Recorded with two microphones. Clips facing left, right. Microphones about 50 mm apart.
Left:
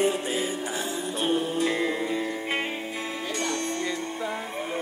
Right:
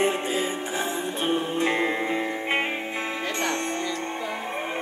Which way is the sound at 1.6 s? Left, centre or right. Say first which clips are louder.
Right 2 dB; right.